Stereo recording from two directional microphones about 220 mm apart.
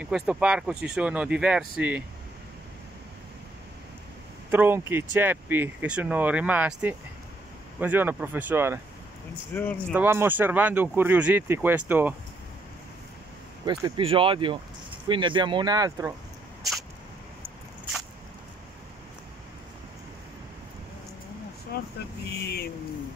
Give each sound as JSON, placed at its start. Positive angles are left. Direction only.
{"t": 0.0, "sound": "speech", "side_deg": -5}
{"t": 4.5, "sound": "speech", "side_deg": -10}
{"t": 9.5, "sound": "speech", "side_deg": 10}
{"t": 9.9, "sound": "speech", "side_deg": -10}
{"t": 13.7, "sound": "speech", "side_deg": -20}
{"t": 21.7, "sound": "vehicle", "side_deg": 45}